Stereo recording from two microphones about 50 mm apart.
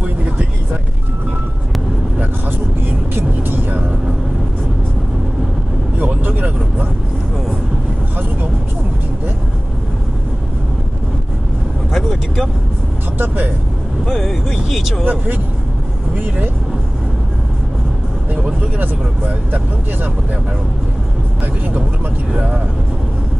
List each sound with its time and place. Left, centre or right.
5.9 s vehicle: right
14.1 s vehicle: centre
14.7 s a sound: centre
18.3 s vehicle: right
22.3 s speech: right